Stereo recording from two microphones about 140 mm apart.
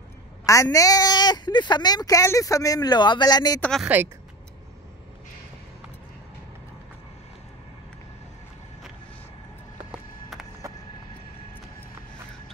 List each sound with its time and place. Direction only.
0.5 s a woman's voice: 25° left (ahead or behind)
3.8 s speech: 15° right (ahead or behind)
10.6 s vehicle: 25° right (ahead or behind)